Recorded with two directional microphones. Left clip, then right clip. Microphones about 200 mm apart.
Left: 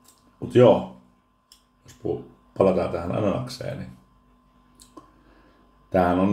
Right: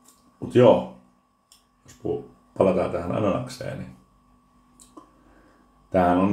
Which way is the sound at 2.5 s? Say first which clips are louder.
Even; 5° left (ahead or behind).